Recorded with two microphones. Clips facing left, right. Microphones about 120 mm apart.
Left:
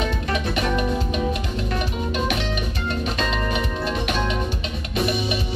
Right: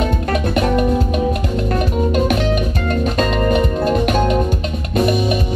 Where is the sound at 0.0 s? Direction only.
50° right (ahead or behind).